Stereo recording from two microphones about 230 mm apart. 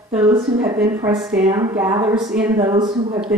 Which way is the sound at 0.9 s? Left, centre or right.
Centre.